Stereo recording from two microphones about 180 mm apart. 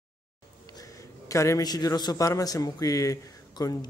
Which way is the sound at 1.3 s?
15° left (ahead or behind).